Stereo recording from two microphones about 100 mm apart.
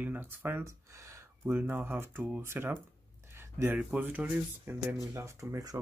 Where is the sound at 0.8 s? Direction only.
35° right (ahead or behind); by 4.9 s 20° right (ahead or behind).